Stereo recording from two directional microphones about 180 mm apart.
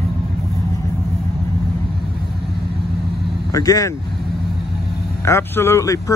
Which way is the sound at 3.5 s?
20° left (ahead or behind).